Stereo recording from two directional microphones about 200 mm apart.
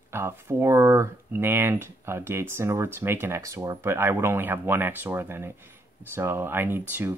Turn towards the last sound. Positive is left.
turn(degrees=-10)  # may be behind; listen again after turning